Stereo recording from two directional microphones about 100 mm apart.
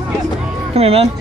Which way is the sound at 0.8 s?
90° right.